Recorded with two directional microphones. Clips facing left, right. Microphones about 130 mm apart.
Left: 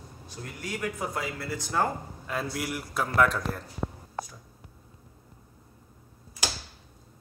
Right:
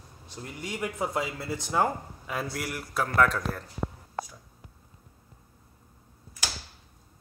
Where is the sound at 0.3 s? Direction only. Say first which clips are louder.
Even; 20° right (ahead or behind).